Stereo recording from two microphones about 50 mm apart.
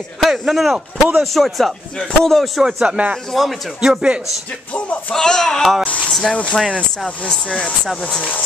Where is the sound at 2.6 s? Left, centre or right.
Centre.